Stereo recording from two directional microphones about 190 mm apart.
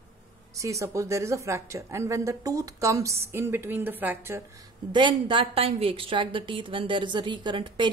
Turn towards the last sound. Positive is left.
turn(degrees=-25)  # may be behind; listen again after turning